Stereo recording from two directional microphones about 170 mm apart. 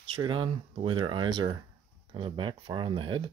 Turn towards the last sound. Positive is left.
turn(degrees=-30)  # may be behind; listen again after turning